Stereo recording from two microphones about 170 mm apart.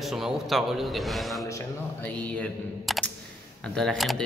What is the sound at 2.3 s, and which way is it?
A man's voice, 5° left (ahead or behind).